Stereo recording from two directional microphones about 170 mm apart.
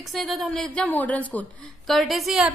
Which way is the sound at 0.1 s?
Centre (ahead or behind).